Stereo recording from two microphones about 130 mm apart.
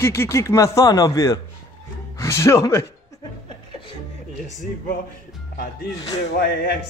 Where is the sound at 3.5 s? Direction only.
40° left (ahead or behind).